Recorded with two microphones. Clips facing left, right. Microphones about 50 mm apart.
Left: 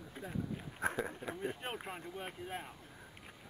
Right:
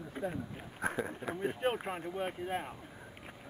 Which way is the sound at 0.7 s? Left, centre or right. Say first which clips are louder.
Right 2 dB; centre.